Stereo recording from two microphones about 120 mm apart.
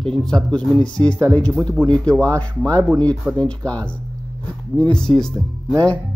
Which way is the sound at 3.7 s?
10° left (ahead or behind).